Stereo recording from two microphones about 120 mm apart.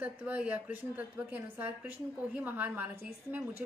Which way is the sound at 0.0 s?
10° right (ahead or behind).